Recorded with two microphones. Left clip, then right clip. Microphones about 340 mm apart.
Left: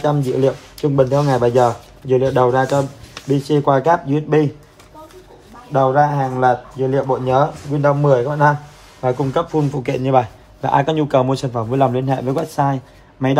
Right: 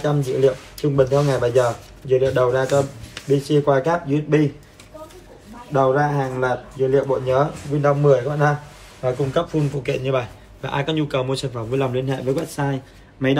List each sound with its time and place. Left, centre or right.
0.0 s speech: left
5.7 s speech: left